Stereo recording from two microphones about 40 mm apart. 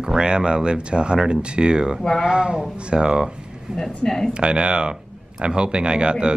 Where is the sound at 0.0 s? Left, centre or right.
Centre.